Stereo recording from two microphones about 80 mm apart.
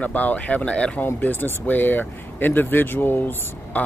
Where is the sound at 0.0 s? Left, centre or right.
Centre.